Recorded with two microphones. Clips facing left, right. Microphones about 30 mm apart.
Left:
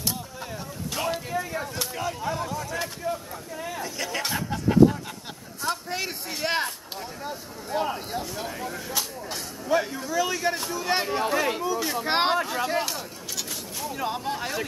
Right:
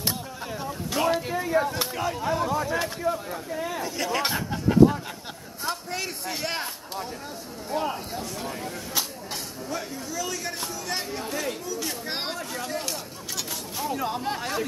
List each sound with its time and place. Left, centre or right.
0.9 s speech: centre
2.5 s speech: centre
3.0 s speech: centre
4.8 s speech: centre
5.9 s a man's voice: centre
7.7 s speech: centre
9.7 s speech: left
12.8 s a sound: centre
13.9 s a man's voice: centre